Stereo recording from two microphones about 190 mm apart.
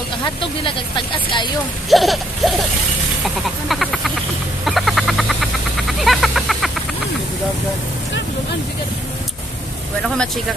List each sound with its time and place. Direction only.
0.2 s speech: 25° left (ahead or behind)
1.9 s speech: centre (ahead or behind)
3.6 s speech: centre (ahead or behind)
4.6 s a sound: centre (ahead or behind)
10.0 s speech: 5° left (ahead or behind)